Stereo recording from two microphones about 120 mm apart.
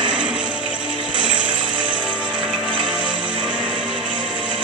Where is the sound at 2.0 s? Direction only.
10° right (ahead or behind).